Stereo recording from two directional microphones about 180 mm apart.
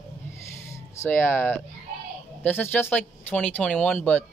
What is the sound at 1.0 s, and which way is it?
Speech, 10° left (ahead or behind).